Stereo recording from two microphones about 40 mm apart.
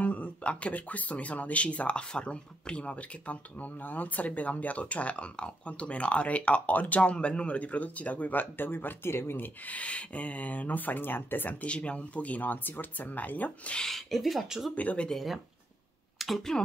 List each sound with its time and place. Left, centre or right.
0.0 s speech: left
3.8 s speech: left
7.0 s speech: left
9.4 s speech: left
11.6 s speech: left
13.7 s speech: centre
14.8 s speech: left
15.1 s speech: centre
16.2 s a sound: centre